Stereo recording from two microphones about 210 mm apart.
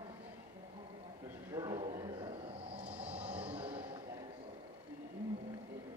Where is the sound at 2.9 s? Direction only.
5° right (ahead or behind).